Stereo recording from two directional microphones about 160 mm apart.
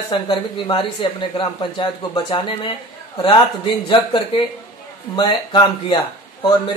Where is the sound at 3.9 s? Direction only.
30° left (ahead or behind).